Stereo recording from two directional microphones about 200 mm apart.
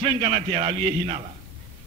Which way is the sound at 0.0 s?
30° right (ahead or behind).